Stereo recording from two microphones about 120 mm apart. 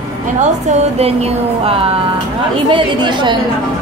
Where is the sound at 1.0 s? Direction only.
60° right (ahead or behind).